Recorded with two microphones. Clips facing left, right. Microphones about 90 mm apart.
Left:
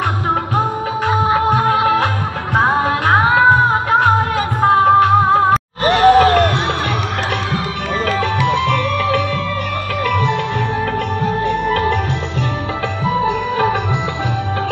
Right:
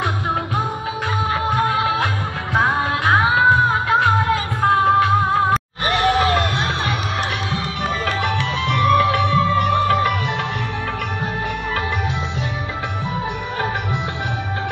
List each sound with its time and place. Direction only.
1.7 s music: 45° left (ahead or behind)
4.6 s music: 35° left (ahead or behind)
5.9 s a sound: 65° left (ahead or behind)
8.4 s music: 55° left (ahead or behind)
8.8 s music: 35° right (ahead or behind)
13.0 s music: 90° left